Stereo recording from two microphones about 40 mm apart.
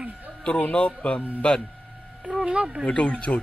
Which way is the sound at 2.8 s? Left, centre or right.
Left.